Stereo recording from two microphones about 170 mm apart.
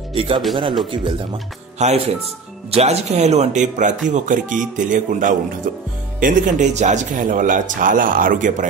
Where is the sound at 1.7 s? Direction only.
40° right (ahead or behind).